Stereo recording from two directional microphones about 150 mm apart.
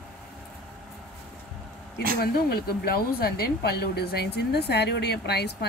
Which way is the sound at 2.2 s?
90° left.